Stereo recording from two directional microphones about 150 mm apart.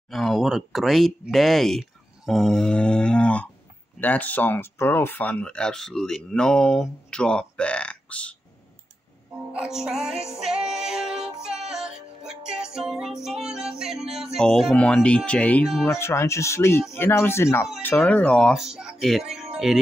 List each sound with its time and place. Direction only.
0.1 s speech: centre (ahead or behind)
9.5 s speech: 5° right (ahead or behind)
10.3 s music: 5° right (ahead or behind)
15.8 s speech: 15° left (ahead or behind); by 19.8 s 5° right (ahead or behind)